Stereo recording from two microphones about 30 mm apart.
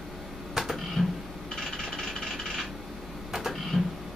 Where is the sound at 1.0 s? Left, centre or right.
Centre.